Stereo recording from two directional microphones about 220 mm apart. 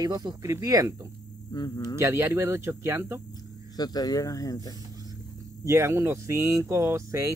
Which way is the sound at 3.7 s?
15° left (ahead or behind).